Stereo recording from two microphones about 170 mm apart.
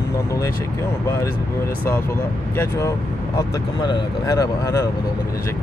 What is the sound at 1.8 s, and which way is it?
Speech, 15° left (ahead or behind).